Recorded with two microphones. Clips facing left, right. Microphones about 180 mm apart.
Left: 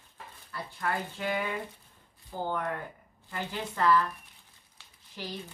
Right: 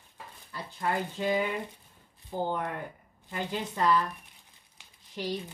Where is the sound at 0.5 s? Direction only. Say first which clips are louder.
Right 2 dB; 20° right (ahead or behind).